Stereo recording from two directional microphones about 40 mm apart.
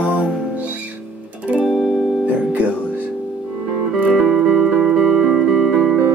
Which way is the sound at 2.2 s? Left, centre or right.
Right.